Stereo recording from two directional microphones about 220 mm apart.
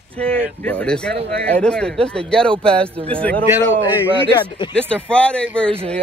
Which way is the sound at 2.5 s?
25° right (ahead or behind).